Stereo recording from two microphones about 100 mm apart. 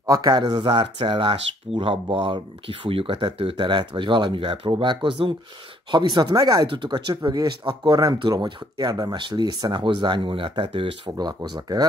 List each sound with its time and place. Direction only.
0.0 s speech: 40° right (ahead or behind)
6.7 s speech: 50° right (ahead or behind)
8.2 s speech: 50° right (ahead or behind)